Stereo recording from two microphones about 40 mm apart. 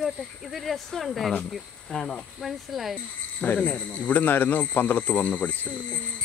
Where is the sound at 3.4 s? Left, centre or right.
Left.